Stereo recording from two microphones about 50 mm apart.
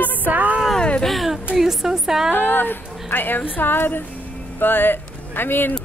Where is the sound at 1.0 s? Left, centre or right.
Centre.